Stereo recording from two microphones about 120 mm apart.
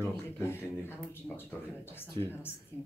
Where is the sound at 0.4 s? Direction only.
20° left (ahead or behind).